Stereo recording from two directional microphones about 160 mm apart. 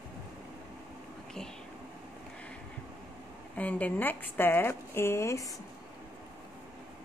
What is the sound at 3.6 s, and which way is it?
Speech, 10° left (ahead or behind).